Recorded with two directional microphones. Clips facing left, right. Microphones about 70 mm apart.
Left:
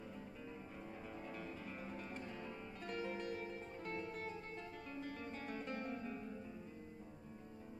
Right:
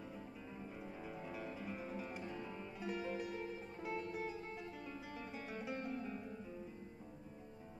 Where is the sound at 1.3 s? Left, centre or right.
Centre.